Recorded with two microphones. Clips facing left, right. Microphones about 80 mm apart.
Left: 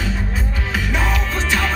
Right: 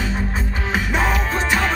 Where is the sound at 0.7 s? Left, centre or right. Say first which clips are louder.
Right 2 dB; right.